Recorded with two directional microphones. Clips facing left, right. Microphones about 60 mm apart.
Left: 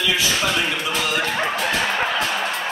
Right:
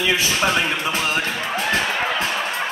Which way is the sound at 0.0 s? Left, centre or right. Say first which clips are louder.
Right 1 dB; right.